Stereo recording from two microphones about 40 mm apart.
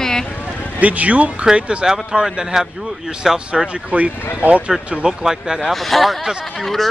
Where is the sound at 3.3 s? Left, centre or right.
Centre.